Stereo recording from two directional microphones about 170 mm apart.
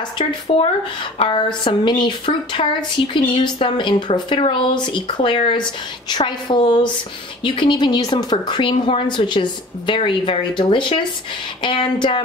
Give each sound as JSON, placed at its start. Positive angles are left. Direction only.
{"t": 0.5, "sound": "speech", "side_deg": 30}